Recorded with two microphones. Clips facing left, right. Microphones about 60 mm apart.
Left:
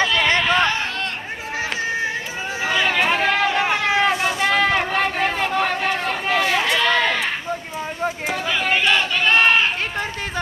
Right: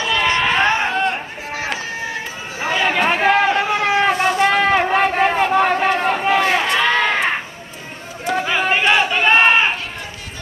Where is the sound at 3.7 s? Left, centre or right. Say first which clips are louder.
Right 2 dB; right.